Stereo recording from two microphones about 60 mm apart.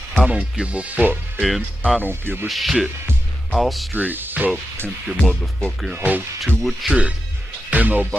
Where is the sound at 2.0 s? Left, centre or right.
Right.